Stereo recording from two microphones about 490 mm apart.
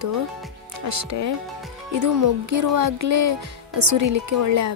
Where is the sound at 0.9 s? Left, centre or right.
Right.